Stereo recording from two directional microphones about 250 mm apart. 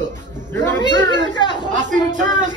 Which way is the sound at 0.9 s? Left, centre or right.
Right.